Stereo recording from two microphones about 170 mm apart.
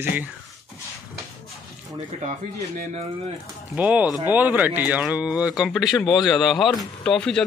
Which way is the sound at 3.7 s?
10° right (ahead or behind).